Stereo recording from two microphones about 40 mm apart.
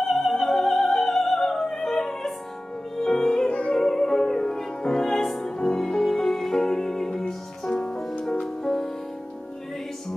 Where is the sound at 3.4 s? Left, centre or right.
Left.